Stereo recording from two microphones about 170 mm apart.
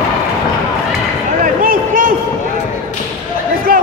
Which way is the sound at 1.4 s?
55° right (ahead or behind).